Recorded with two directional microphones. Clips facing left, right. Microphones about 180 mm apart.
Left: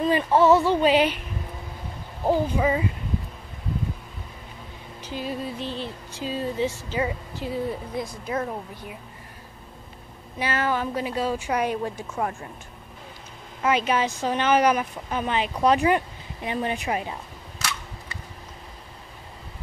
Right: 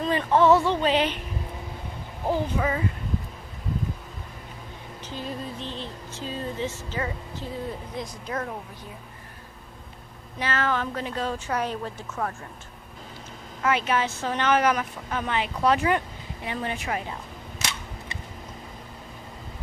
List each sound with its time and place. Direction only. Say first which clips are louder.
0.0 s speech: left 2 dB; 10° left (ahead or behind)
2.2 s speech: left 4 dB; 15° left (ahead or behind)
5.0 s speech: left 4 dB; 10° left (ahead or behind)
10.4 s speech: left 1 dB; 10° left (ahead or behind)
13.6 s speech: left 2 dB; 15° left (ahead or behind)